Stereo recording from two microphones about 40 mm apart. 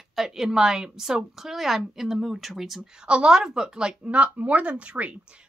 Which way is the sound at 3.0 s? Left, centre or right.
Right.